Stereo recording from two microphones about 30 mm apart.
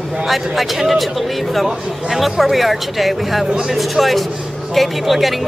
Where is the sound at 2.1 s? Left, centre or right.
Centre.